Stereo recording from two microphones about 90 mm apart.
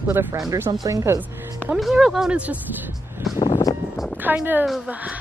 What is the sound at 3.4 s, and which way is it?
Vehicle, 50° left (ahead or behind).